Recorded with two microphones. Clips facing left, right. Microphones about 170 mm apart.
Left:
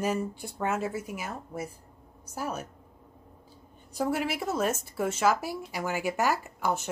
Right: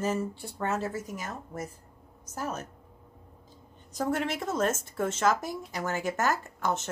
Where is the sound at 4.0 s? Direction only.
5° left (ahead or behind).